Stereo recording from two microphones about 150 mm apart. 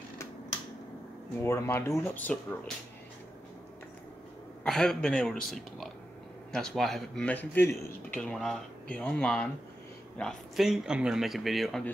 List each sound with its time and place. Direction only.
1.4 s speech: 15° left (ahead or behind)
4.6 s a man's voice: 5° left (ahead or behind)
6.5 s a man's voice: 5° left (ahead or behind)